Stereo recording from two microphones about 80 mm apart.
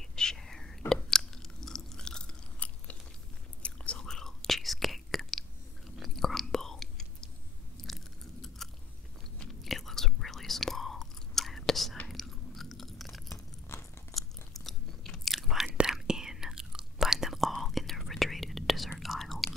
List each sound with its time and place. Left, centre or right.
0.0 s chewing: centre
3.6 s whispering: centre
5.9 s chewing: centre
13.7 s crunch: left
14.1 s biting: centre
15.9 s whispering: centre